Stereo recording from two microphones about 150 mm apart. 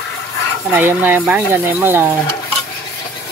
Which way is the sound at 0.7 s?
15° right (ahead or behind).